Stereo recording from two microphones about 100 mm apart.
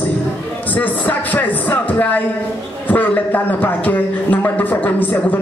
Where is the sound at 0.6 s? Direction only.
15° left (ahead or behind).